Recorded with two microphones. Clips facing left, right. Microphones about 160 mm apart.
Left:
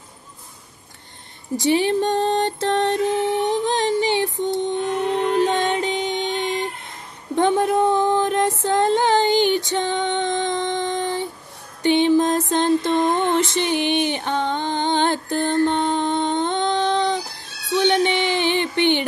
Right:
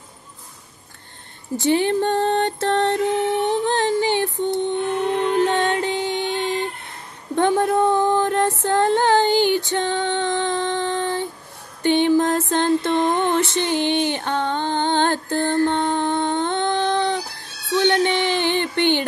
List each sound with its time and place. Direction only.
1.6 s music: 15° left (ahead or behind)
3.4 s a sound: 15° left (ahead or behind)
5.1 s music: 15° left (ahead or behind)
7.3 s female singing: 15° left (ahead or behind)
11.8 s mantra: 20° left (ahead or behind)
14.1 s music: 15° left (ahead or behind)